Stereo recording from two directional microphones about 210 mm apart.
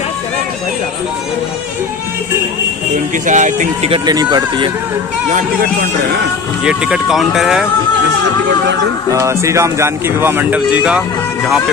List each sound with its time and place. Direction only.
3.3 s speech: 35° right (ahead or behind)
4.0 s speech: 20° right (ahead or behind)
6.6 s speech: 5° right (ahead or behind)
9.1 s speech: 15° right (ahead or behind)